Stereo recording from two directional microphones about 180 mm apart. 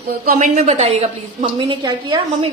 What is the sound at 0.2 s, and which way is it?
Speech, 55° right (ahead or behind).